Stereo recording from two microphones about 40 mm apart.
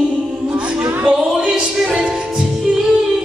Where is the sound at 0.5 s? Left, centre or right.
Right.